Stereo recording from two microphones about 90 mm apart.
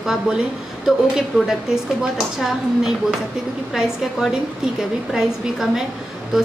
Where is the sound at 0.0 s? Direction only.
5° right (ahead or behind).